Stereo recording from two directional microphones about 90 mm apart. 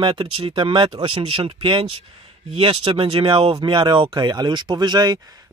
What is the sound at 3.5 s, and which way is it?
Speech, 60° right (ahead or behind).